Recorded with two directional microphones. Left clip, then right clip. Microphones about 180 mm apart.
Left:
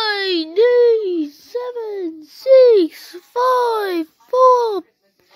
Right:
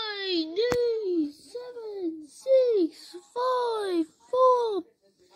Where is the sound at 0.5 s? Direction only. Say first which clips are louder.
Left 15 dB; 40° left (ahead or behind).